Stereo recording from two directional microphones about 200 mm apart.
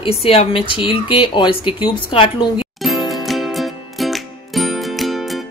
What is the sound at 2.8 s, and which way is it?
Music, centre (ahead or behind).